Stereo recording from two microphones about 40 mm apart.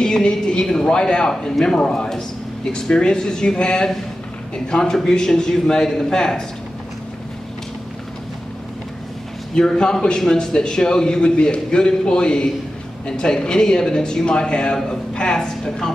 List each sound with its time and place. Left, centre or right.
0.0 s a man's voice: centre
9.6 s a man's voice: centre